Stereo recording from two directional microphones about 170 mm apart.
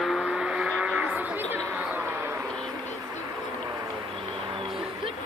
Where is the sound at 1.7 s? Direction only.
10° right (ahead or behind).